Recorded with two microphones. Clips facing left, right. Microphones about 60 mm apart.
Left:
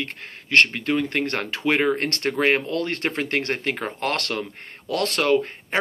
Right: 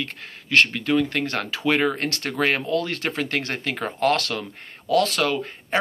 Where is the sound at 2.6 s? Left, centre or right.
Left.